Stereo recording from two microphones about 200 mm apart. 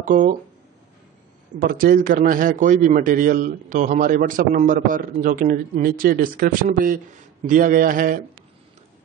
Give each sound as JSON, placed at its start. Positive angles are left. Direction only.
{"t": 0.0, "sound": "speech", "side_deg": -40}
{"t": 1.6, "sound": "a man's voice", "side_deg": -45}